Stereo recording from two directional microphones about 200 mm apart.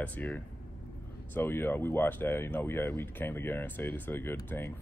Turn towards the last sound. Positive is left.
turn(degrees=10)  # may be behind; listen again after turning